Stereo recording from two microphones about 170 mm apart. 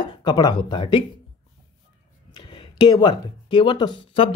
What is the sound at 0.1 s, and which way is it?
Speech, 25° left (ahead or behind).